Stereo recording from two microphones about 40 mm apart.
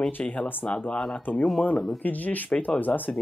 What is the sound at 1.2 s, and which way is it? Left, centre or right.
Speech, left.